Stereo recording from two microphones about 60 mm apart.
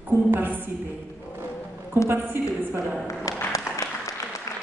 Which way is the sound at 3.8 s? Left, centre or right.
Left.